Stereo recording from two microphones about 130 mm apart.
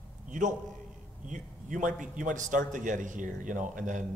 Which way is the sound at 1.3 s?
80° right.